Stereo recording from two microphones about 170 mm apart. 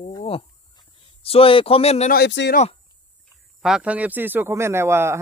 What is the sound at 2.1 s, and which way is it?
Speech, 80° left.